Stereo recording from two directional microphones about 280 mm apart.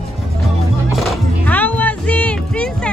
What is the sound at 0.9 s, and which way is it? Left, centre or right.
Music, centre.